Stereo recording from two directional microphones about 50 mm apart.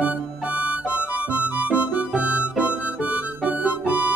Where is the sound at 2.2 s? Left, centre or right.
Right.